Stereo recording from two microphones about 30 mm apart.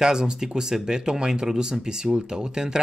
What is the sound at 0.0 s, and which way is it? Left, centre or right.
Speech, right.